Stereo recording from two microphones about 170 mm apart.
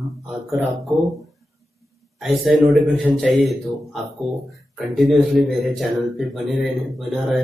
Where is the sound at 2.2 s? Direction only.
Centre (ahead or behind).